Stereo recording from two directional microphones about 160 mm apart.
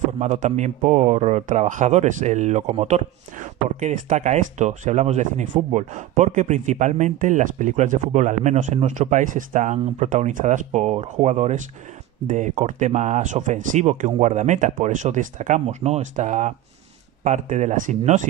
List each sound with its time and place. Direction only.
0.2 s speech: 45° right (ahead or behind)